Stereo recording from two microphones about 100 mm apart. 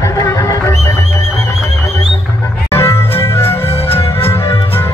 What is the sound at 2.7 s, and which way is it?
Music, 25° left (ahead or behind).